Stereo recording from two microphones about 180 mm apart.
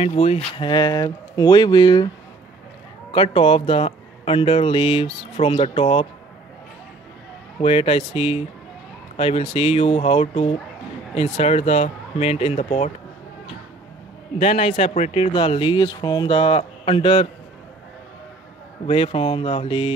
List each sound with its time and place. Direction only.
0.0 s a man's voice: 35° left (ahead or behind)
0.6 s speech: 25° left (ahead or behind)
3.1 s a man's voice: 30° left (ahead or behind)
7.6 s a man's voice: 35° left (ahead or behind)
14.4 s a man's voice: 35° left (ahead or behind)
18.9 s a man's voice: 30° left (ahead or behind)